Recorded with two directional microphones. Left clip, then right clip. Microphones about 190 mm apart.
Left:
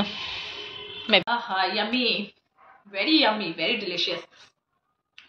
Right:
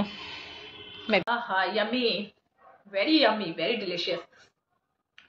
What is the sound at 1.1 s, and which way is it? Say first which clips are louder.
A woman's voice: left 3 dB; centre (ahead or behind).